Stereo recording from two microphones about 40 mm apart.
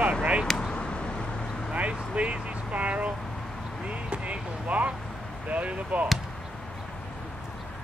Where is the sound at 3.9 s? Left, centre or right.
Right.